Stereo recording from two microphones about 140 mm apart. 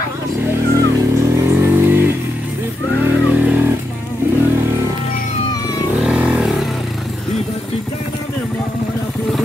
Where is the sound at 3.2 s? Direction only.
10° right (ahead or behind).